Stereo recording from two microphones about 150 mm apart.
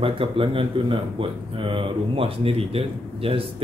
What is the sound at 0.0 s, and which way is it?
A man's voice, 35° right (ahead or behind).